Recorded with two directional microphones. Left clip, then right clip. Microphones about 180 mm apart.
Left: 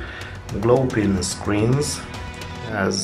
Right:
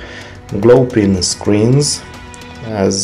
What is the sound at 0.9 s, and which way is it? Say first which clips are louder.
Speech: right 8 dB; 30° right (ahead or behind).